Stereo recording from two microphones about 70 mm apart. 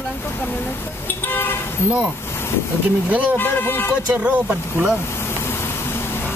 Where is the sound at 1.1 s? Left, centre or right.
Left.